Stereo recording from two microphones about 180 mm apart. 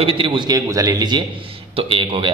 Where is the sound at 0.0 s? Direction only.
30° right (ahead or behind).